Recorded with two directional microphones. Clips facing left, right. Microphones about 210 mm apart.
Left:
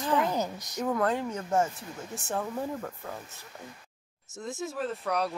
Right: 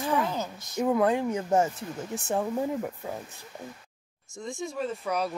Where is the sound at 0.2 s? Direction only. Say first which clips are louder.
Left 1 dB; 15° left (ahead or behind).